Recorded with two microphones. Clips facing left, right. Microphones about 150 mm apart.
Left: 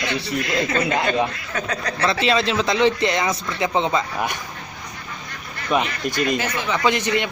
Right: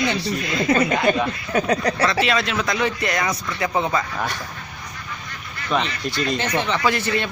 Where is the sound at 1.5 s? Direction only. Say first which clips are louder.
Right 7 dB; 35° right (ahead or behind).